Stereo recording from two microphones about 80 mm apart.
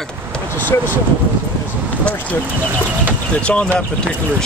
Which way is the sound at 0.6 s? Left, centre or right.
Left.